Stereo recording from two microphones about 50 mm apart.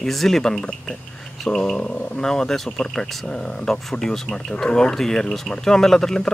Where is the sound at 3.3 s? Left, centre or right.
Centre.